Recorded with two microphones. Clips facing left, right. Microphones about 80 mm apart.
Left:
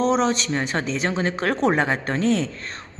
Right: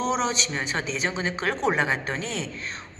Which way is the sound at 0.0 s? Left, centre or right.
Left.